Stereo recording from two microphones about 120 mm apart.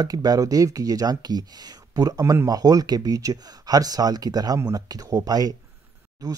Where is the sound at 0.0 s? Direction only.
30° right (ahead or behind).